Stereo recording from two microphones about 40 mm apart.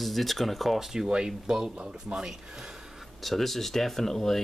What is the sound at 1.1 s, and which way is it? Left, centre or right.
Speech, centre.